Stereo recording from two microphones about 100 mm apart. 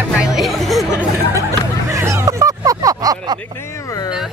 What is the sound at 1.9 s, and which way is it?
Music, 25° right (ahead or behind).